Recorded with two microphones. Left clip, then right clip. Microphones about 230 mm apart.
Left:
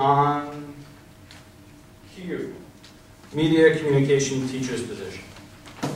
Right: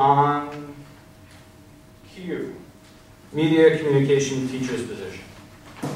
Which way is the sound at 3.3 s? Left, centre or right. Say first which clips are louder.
Right 1 dB; centre.